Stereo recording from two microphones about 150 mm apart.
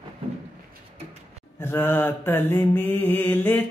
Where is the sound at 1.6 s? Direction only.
15° left (ahead or behind).